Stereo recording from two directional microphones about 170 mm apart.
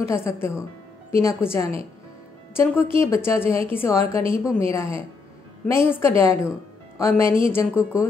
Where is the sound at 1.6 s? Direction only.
35° right (ahead or behind).